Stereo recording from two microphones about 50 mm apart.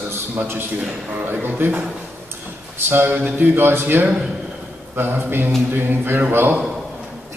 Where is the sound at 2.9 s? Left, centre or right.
Right.